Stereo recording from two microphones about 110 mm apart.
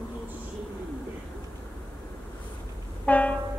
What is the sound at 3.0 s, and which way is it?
Train, 15° left (ahead or behind).